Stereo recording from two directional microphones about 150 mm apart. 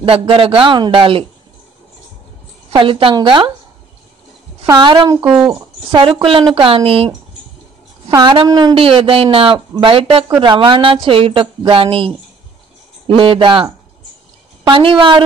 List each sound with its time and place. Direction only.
0.0 s a woman's voice: 35° right (ahead or behind)
2.7 s a woman's voice: 35° right (ahead or behind)
4.7 s a woman's voice: 30° right (ahead or behind)
8.1 s a woman's voice: 30° right (ahead or behind)
8.7 s a woman's voice: 40° right (ahead or behind)
14.7 s a woman's voice: 35° right (ahead or behind)